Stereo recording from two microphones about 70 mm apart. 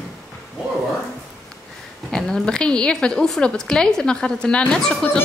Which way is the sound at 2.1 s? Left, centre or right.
Centre.